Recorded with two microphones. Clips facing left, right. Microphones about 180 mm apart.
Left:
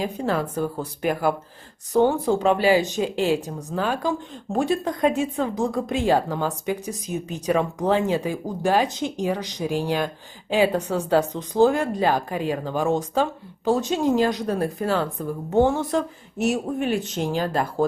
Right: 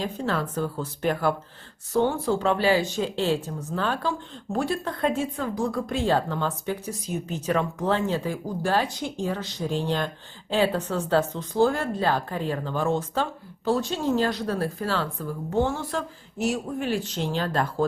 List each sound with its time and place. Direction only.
0.0 s speech: 10° left (ahead or behind)